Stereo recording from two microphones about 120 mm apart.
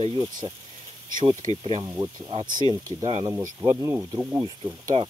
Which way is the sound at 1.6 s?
55° right (ahead or behind).